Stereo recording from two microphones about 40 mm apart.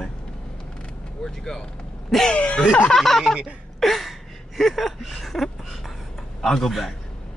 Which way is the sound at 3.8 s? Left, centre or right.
Centre.